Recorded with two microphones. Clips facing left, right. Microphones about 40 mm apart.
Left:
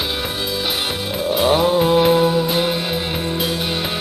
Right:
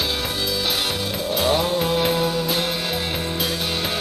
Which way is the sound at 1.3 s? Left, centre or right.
Centre.